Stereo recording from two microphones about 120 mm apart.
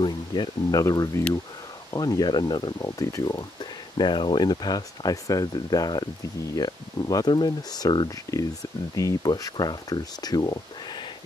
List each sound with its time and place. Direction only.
0.0 s speech: 35° left (ahead or behind)
4.0 s speech: 40° left (ahead or behind)